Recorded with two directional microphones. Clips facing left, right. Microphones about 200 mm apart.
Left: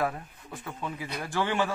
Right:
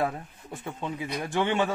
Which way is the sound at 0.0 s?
25° right (ahead or behind).